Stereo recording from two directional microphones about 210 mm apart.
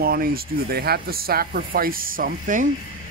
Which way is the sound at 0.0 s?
45° right (ahead or behind).